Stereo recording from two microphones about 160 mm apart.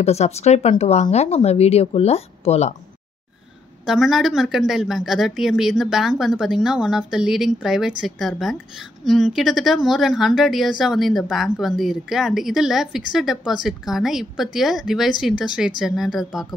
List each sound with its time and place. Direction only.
0.0 s speech: 40° left (ahead or behind)
3.8 s a woman's voice: centre (ahead or behind)